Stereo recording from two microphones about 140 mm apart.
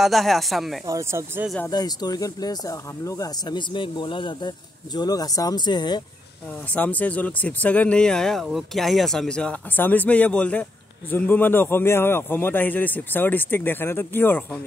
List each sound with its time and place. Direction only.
0.0 s speech: centre (ahead or behind)
0.8 s speech: 20° right (ahead or behind)
1.7 s speech: 30° left (ahead or behind)
6.7 s speech: 10° left (ahead or behind)